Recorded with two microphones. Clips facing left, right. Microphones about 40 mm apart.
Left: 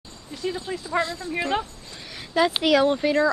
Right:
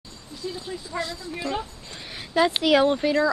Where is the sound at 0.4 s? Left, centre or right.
Left.